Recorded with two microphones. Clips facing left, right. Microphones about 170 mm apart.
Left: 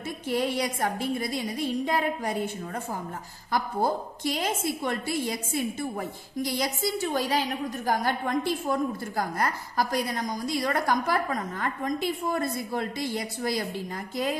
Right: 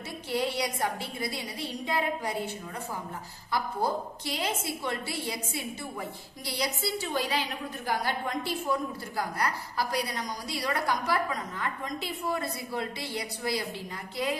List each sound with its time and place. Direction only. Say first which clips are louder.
0.4 s a woman's voice: left 1 dB; 50° left (ahead or behind)